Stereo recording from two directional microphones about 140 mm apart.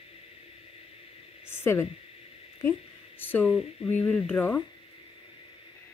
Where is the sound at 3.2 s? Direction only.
15° left (ahead or behind).